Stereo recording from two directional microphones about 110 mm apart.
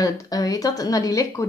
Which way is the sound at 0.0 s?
30° left (ahead or behind).